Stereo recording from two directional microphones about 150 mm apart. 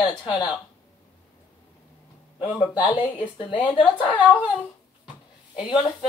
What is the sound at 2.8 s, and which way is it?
A woman's voice, 35° left (ahead or behind).